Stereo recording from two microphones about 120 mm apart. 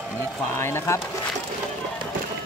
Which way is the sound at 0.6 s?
20° left (ahead or behind).